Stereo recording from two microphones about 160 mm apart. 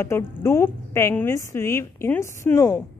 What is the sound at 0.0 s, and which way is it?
A woman's voice, 15° left (ahead or behind).